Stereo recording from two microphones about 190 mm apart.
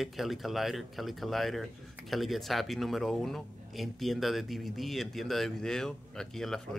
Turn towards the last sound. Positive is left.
turn(degrees=0)  # may be behind; listen again after turning